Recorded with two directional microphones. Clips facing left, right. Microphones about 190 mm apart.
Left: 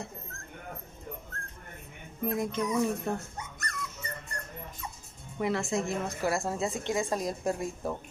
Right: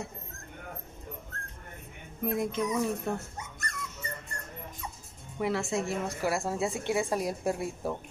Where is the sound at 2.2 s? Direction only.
Centre (ahead or behind).